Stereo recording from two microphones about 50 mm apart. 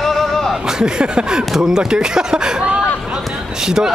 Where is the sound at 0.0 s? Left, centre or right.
Centre.